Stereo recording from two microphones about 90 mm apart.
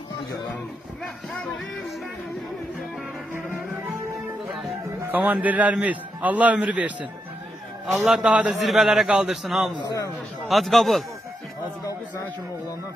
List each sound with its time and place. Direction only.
5.1 s a man's voice: 20° right (ahead or behind)
7.8 s a man's voice: 5° right (ahead or behind)